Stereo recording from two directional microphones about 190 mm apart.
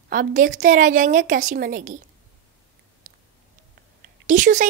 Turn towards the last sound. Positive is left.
turn(degrees=-40)  # may be behind; listen again after turning